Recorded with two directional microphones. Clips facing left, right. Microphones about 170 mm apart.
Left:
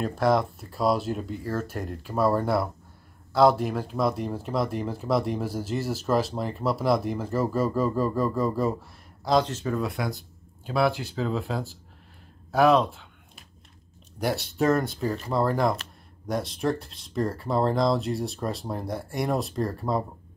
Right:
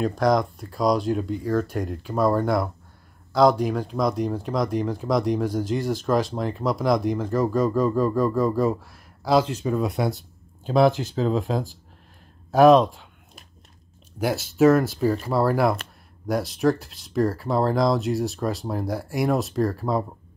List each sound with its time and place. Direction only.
0.0 s speech: 5° left (ahead or behind); by 13.0 s 15° right (ahead or behind)
14.1 s speech: centre (ahead or behind)